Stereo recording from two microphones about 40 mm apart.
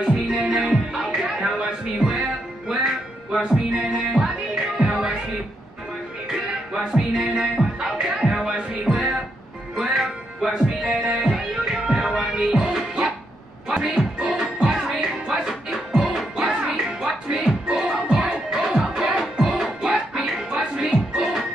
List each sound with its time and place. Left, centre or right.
0.0 s music: centre
0.5 s music: right
0.9 s music: centre
6.2 s music: centre